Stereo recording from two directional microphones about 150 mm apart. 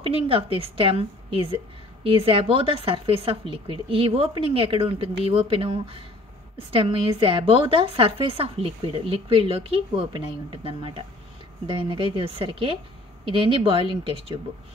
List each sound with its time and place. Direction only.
0.0 s a woman's voice: 40° right (ahead or behind)